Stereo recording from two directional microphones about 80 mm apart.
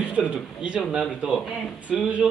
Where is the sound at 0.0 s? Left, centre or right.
Centre.